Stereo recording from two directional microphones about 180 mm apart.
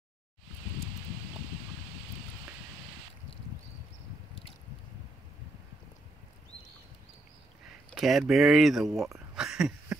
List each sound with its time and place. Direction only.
8.0 s speech: centre (ahead or behind)